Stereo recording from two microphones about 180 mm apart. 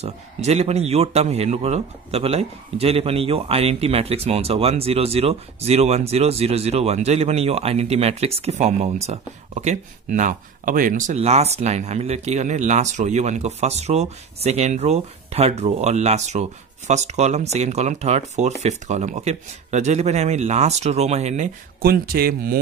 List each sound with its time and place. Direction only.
0.0 s a man's voice: 35° right (ahead or behind)
21.8 s speech: 55° right (ahead or behind)